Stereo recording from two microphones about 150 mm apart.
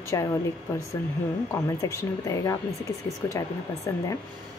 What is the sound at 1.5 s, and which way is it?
A woman's voice, 20° left (ahead or behind).